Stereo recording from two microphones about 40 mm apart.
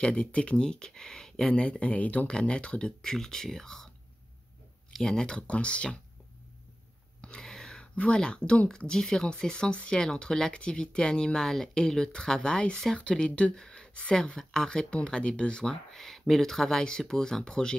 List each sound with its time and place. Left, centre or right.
0.0 s speech: left
0.7 s speech: centre
1.5 s speech: left
2.3 s speech: left
3.0 s speech: centre
5.0 s speech: centre
7.2 s a sound: centre
7.9 s speech: left
8.2 s speech: left
13.6 s a sound: centre
14.1 s speech: centre
14.9 s speech: left
15.9 s speech: centre